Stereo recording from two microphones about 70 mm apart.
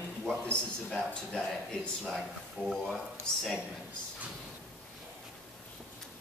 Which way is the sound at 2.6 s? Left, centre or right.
Centre.